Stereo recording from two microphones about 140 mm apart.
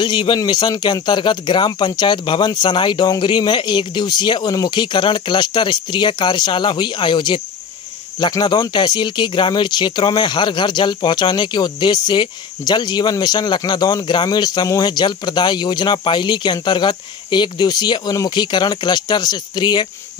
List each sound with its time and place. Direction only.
0.0 s speech: 35° left (ahead or behind)